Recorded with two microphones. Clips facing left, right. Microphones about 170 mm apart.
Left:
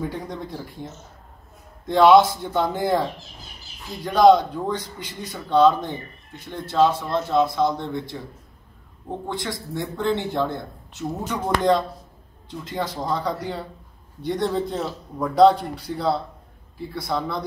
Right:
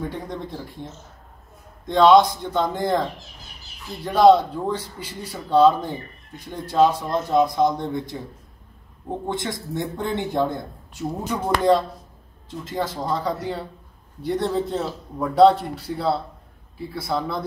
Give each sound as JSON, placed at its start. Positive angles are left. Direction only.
{"t": 0.0, "sound": "a man's voice", "side_deg": 0}
{"t": 1.9, "sound": "a man's voice", "side_deg": 5}
{"t": 9.3, "sound": "a man's voice", "side_deg": -20}